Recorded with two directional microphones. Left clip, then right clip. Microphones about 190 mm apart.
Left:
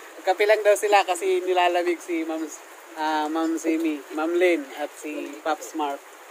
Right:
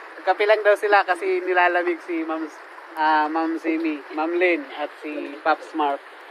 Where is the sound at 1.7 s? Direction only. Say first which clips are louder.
Right 1 dB; 25° left (ahead or behind).